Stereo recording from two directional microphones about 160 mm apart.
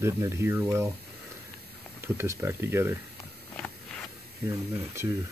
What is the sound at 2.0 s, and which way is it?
Speech, 15° right (ahead or behind).